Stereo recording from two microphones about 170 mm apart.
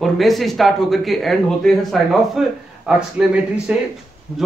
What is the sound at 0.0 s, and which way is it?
Speech, centre (ahead or behind).